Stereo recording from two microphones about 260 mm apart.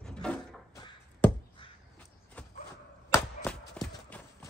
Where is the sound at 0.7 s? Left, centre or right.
Centre.